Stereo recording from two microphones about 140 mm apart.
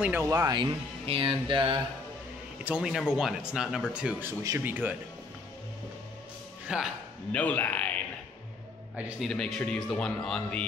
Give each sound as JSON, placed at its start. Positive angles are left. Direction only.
{"t": 0.0, "sound": "speech", "side_deg": -15}
{"t": 0.6, "sound": "speech", "side_deg": -40}
{"t": 2.6, "sound": "speech", "side_deg": -5}
{"t": 4.3, "sound": "speech", "side_deg": -20}
{"t": 6.7, "sound": "speech", "side_deg": -5}
{"t": 7.3, "sound": "a man's voice", "side_deg": 10}
{"t": 9.2, "sound": "speech", "side_deg": 5}